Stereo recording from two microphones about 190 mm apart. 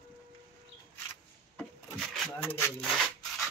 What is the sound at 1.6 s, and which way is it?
Rub, 5° left (ahead or behind).